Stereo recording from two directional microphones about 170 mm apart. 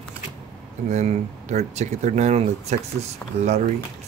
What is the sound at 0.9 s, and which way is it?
Speech, 40° right (ahead or behind).